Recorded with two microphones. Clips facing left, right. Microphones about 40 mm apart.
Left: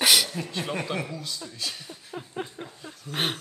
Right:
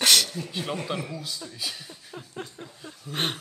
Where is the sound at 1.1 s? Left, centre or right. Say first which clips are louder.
Even; centre.